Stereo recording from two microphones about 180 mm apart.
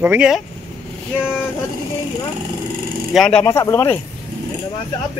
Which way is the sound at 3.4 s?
15° left (ahead or behind).